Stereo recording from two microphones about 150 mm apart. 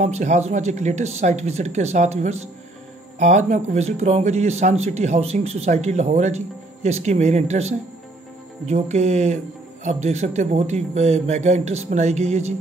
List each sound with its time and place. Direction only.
0.0 s speech: 50° right (ahead or behind)